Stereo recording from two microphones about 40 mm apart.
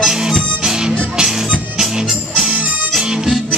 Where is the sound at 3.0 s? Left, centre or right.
Centre.